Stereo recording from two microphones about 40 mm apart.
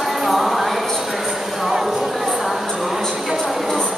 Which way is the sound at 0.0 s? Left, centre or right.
Centre.